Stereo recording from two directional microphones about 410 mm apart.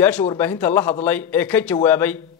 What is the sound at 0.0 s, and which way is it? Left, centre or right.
Speech, centre.